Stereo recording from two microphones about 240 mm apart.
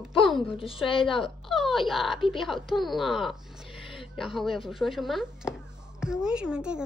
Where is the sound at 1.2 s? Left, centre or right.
Centre.